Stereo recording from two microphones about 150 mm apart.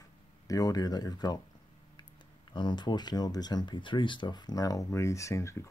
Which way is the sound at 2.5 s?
30° left (ahead or behind).